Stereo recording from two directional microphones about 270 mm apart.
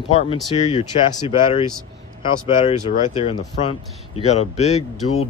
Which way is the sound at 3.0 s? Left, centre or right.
Left.